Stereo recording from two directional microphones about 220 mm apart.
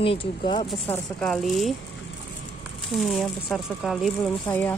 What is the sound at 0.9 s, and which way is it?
Speech, 5° left (ahead or behind).